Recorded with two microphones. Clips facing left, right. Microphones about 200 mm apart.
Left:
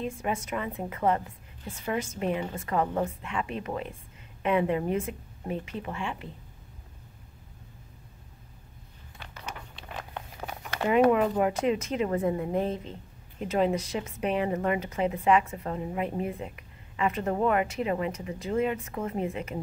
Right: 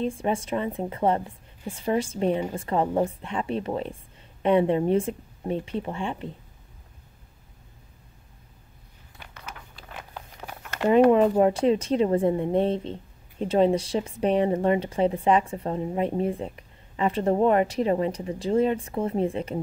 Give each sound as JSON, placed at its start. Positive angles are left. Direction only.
{"t": 0.0, "sound": "a woman's voice", "side_deg": -30}
{"t": 9.5, "sound": "a sound", "side_deg": -5}
{"t": 10.9, "sound": "a woman's voice", "side_deg": -30}